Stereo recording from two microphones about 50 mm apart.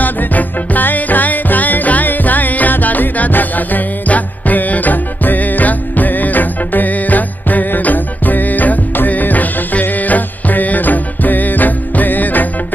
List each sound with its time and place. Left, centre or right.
0.0 s music: left